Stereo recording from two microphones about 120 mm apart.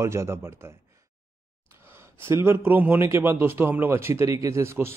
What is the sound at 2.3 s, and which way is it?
Speech, 20° right (ahead or behind).